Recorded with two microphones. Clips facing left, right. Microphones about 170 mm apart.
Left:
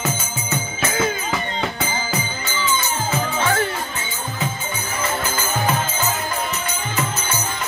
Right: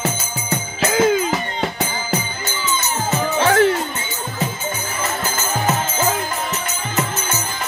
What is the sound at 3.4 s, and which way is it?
Music, 90° right.